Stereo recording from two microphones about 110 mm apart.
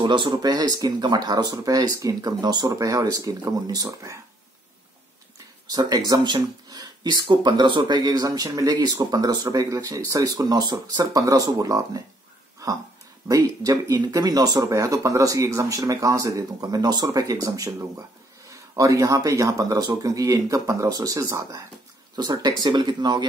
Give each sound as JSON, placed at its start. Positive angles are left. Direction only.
{"t": 0.0, "sound": "speech", "side_deg": -45}
{"t": 5.7, "sound": "speech", "side_deg": -40}
{"t": 13.3, "sound": "speech", "side_deg": -30}
{"t": 22.1, "sound": "speech", "side_deg": -40}